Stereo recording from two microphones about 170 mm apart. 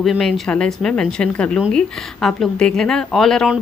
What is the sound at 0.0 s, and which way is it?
Speech, centre (ahead or behind).